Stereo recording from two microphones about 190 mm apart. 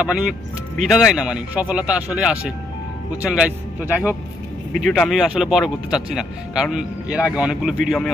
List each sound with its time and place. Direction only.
0.0 s speech: 5° right (ahead or behind)